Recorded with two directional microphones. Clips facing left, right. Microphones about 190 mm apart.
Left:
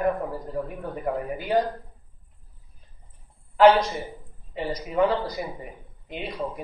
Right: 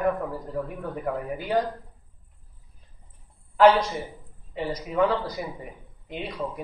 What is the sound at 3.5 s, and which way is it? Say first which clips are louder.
Speech: left 1 dB; 10° left (ahead or behind).